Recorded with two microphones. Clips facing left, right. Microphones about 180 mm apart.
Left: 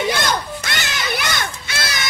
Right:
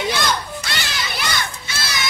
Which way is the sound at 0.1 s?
50° left (ahead or behind).